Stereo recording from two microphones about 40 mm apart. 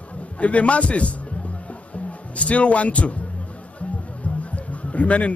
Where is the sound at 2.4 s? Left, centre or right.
Left.